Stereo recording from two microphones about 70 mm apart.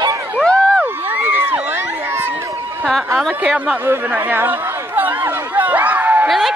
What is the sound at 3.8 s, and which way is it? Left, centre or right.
Chatter, right.